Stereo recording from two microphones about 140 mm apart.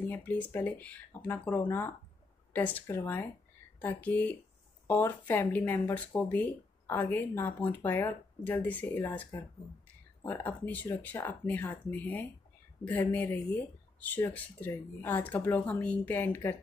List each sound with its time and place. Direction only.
0.0 s speech: 10° left (ahead or behind)